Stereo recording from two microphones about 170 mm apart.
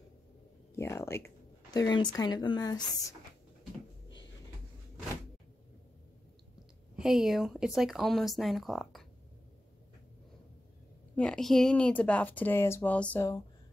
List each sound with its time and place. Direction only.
0.7 s speech: 15° left (ahead or behind)
7.0 s speech: centre (ahead or behind)
11.1 s speech: 5° left (ahead or behind)